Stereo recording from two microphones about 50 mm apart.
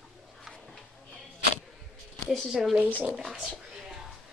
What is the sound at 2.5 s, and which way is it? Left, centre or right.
Speech, centre.